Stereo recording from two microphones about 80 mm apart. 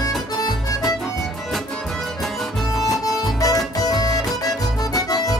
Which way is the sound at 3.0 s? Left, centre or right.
Left.